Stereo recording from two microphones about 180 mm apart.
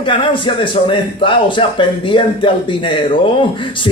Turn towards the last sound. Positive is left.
turn(degrees=30)  # may be behind; listen again after turning